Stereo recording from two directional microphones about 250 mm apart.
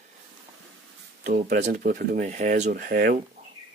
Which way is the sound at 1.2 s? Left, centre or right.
Right.